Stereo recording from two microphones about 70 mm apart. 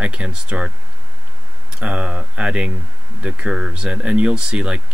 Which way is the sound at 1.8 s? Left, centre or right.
Centre.